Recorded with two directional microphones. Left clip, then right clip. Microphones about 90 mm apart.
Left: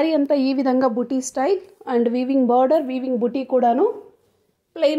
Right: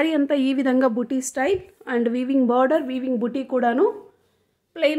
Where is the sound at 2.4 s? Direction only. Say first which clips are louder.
Left 2 dB; centre (ahead or behind).